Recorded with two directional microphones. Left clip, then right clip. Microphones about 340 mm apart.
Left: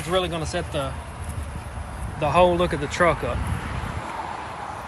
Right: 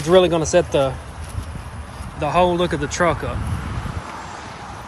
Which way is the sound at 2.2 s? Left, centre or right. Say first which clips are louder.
Right 1 dB; centre.